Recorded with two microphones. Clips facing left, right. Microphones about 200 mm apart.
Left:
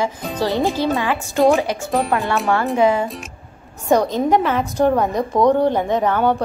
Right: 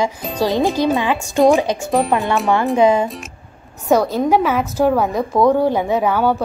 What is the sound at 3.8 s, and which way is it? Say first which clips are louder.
A woman's voice: right 1 dB; 5° right (ahead or behind).